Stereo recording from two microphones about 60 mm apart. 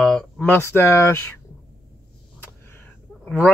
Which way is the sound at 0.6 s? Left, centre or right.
Left.